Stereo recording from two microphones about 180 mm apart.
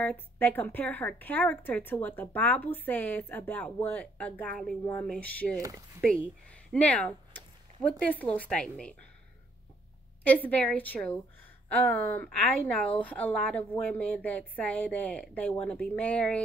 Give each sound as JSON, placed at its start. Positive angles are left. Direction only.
{"t": 0.0, "sound": "a woman's voice", "side_deg": 10}
{"t": 4.8, "sound": "a woman's voice", "side_deg": 10}
{"t": 5.6, "sound": "speech", "side_deg": -20}
{"t": 6.0, "sound": "speech", "side_deg": 5}
{"t": 10.2, "sound": "a woman's voice", "side_deg": 10}